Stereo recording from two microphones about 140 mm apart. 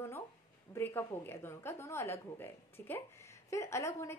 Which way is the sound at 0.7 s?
15° left (ahead or behind).